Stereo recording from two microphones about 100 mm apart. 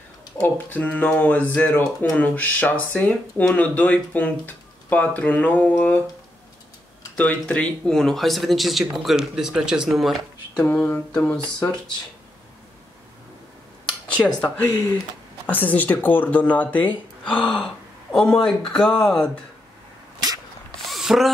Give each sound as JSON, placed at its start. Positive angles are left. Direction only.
{"t": 0.4, "sound": "speech", "side_deg": 15}
{"t": 7.2, "sound": "speech", "side_deg": 15}
{"t": 10.5, "sound": "speech", "side_deg": 10}
{"t": 13.8, "sound": "a sound", "side_deg": 15}
{"t": 15.4, "sound": "speech", "side_deg": 15}
{"t": 20.8, "sound": "a sound", "side_deg": 0}